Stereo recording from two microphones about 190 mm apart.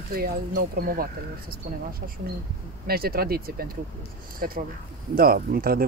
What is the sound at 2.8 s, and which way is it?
Speech, 55° right (ahead or behind).